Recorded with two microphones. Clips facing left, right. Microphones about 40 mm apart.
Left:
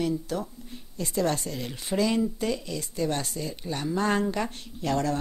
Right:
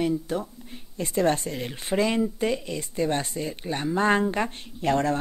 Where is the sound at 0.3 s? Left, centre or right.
Right.